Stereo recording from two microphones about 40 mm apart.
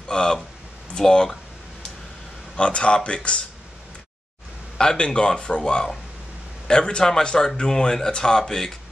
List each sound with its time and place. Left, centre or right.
0.1 s a man's voice: centre
2.5 s speech: left
4.7 s a man's voice: left